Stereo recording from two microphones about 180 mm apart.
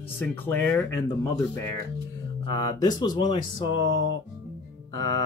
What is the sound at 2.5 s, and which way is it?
Speech, 25° left (ahead or behind).